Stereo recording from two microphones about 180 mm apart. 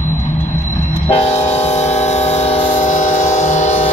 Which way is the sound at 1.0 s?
35° left (ahead or behind).